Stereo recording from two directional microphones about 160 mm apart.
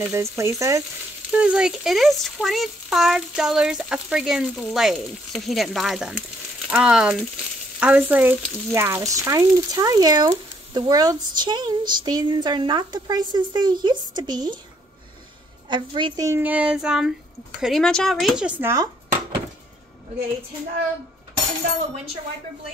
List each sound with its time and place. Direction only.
0.0 s speech: 15° right (ahead or behind)
1.3 s speech: 5° right (ahead or behind)
7.8 s child singing: 10° right (ahead or behind)
8.7 s speech: 15° right (ahead or behind)
15.7 s speech: 30° right (ahead or behind)
16.3 s child singing: 10° right (ahead or behind)
17.6 s speech: centre (ahead or behind)